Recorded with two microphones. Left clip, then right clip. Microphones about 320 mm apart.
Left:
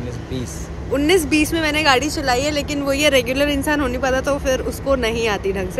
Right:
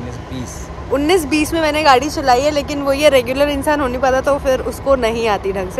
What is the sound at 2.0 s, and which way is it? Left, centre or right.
Speech, centre.